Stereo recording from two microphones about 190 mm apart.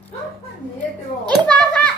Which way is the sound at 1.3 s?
5° left (ahead or behind).